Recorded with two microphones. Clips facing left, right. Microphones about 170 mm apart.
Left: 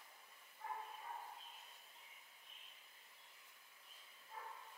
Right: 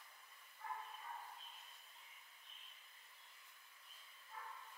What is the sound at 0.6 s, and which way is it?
Bow-wow, 15° left (ahead or behind).